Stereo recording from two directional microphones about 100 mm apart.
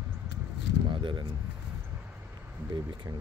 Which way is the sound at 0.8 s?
55° right (ahead or behind).